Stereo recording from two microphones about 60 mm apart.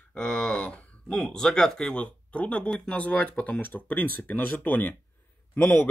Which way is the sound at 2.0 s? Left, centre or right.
Left.